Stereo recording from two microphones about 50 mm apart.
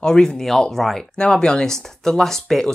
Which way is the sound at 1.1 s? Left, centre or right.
Centre.